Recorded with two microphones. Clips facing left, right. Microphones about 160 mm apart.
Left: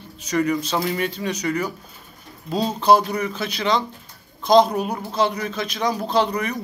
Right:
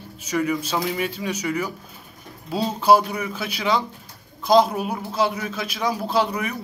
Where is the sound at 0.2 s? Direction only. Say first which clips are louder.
Left 2 dB; 5° right (ahead or behind).